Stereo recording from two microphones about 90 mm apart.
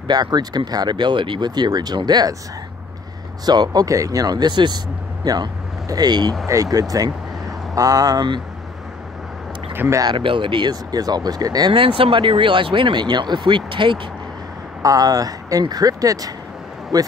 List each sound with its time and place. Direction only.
0.1 s speech: 50° right (ahead or behind)
3.4 s speech: 50° right (ahead or behind)
6.4 s speech: 35° right (ahead or behind)
10.1 s speech: 70° right (ahead or behind)
10.7 s speech: 45° right (ahead or behind)
11.7 s speech: 75° right (ahead or behind)
14.8 s speech: 45° right (ahead or behind)